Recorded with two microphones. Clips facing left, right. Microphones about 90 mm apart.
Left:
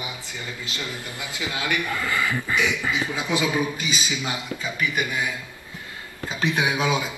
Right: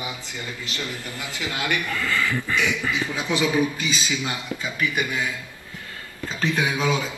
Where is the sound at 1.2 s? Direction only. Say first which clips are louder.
Even; 20° left (ahead or behind).